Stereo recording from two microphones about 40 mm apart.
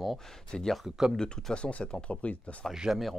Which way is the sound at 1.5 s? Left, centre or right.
Left.